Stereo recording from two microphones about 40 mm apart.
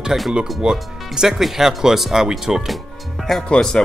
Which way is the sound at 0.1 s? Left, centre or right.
Centre.